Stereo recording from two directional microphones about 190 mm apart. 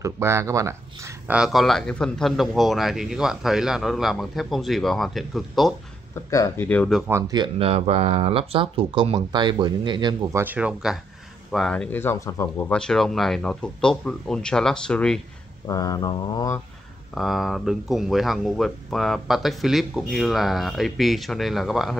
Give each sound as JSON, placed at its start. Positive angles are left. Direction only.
{"t": 0.0, "sound": "speech", "side_deg": -15}
{"t": 6.3, "sound": "speech", "side_deg": 15}
{"t": 7.0, "sound": "speech", "side_deg": -15}
{"t": 10.4, "sound": "speech", "side_deg": -10}
{"t": 15.6, "sound": "mantra", "side_deg": 20}
{"t": 17.1, "sound": "speech", "side_deg": 0}